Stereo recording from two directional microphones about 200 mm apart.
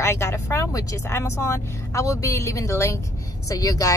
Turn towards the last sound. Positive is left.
turn(degrees=15)  # may be behind; listen again after turning